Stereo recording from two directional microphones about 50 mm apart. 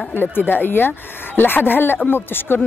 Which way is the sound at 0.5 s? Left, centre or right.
Left.